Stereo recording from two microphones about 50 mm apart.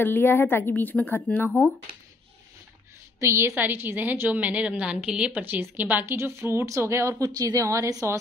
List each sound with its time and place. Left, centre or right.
0.0 s a woman's voice: left
3.2 s a woman's voice: right
3.5 s a woman's voice: right; by 5.3 s centre
5.3 s a woman's voice: right
6.2 s a woman's voice: right
6.8 s a woman's voice: right